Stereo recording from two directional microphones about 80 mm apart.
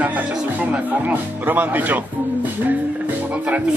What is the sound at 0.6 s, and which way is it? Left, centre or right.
Speech, centre.